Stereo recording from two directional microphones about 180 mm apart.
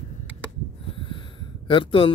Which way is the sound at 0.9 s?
30° left (ahead or behind).